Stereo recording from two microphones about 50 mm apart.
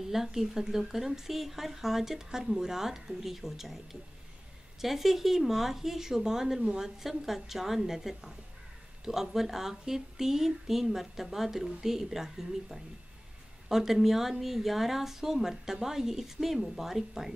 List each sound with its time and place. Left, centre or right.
0.0 s speech: centre